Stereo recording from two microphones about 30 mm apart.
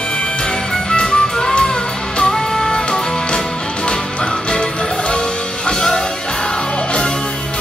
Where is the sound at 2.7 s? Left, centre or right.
Left.